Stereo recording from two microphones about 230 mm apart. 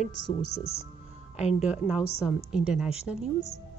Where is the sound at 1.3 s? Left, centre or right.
Left.